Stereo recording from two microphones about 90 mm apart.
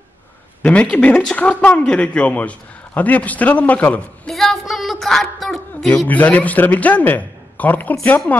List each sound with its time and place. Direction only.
0.6 s speech: 15° left (ahead or behind)
4.3 s a sound: centre (ahead or behind)
6.0 s speech: 15° left (ahead or behind)